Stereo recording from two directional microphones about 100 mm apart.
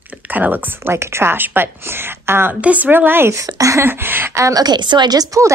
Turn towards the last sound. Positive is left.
turn(degrees=-35)  # may be behind; listen again after turning